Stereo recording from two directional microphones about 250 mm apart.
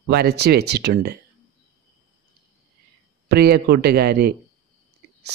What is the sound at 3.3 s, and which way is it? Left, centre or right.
Speech, right.